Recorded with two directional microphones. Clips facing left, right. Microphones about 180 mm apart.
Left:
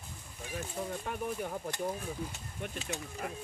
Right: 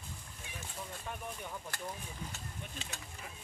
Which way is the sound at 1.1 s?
60° left (ahead or behind).